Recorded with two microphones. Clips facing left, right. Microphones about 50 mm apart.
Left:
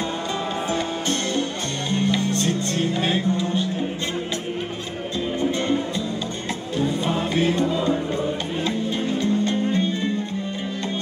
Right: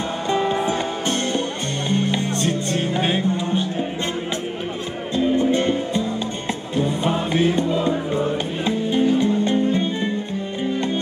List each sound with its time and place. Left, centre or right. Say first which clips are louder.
0.3 s music: right 9 dB; right
5.1 s music: right 6 dB; right
8.6 s music: right 7 dB; centre